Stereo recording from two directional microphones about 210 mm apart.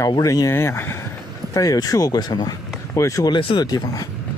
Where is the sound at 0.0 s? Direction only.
15° left (ahead or behind).